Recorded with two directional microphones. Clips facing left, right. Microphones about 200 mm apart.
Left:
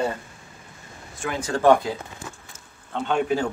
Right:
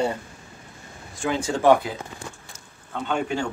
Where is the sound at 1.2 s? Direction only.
25° right (ahead or behind).